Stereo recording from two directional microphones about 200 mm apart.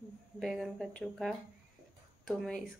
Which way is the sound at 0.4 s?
Centre (ahead or behind).